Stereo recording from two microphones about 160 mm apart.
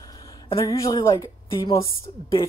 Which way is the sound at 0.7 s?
20° left (ahead or behind).